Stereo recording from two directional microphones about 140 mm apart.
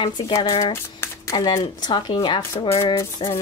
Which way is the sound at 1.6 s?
30° left (ahead or behind).